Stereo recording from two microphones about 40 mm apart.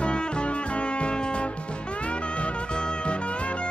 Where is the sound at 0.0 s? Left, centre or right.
Left.